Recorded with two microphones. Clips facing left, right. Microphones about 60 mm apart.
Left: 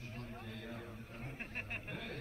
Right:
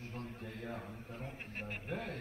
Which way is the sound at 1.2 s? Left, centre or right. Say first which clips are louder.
Left 2 dB; left.